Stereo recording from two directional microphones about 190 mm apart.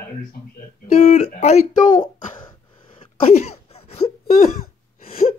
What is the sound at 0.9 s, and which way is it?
Speech, 40° left (ahead or behind).